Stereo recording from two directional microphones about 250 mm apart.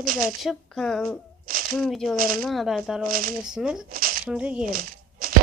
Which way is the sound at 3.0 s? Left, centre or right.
Right.